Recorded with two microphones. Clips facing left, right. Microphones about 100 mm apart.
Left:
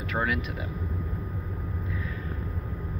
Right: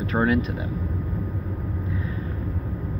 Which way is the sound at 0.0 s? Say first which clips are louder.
Right 7 dB; 30° right (ahead or behind).